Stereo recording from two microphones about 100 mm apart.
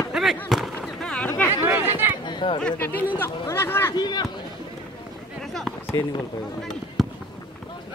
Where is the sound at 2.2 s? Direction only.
50° left (ahead or behind).